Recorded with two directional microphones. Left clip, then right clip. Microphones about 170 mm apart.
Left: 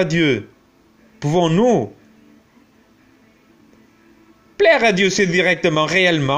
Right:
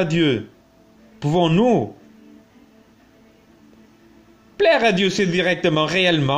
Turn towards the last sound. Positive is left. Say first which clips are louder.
# left 2 dB
turn(degrees=20)  # may be behind; listen again after turning